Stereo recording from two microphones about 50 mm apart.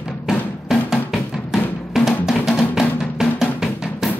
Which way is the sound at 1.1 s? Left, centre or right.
Centre.